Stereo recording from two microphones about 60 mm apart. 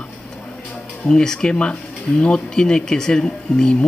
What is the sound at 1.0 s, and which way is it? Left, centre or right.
Speech, centre.